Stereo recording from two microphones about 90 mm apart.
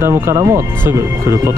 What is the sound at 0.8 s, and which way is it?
Speech, 30° right (ahead or behind).